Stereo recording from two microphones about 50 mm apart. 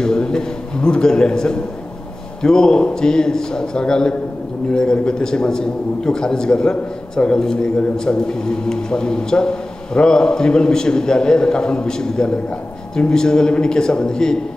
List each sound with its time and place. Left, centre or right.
0.0 s a man's voice: centre